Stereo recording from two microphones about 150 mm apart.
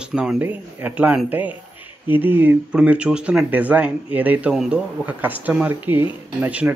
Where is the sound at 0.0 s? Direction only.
5° right (ahead or behind).